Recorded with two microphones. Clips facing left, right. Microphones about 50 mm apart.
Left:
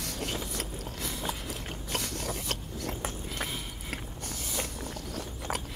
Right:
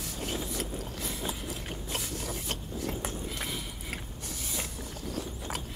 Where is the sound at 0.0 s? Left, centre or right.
Left.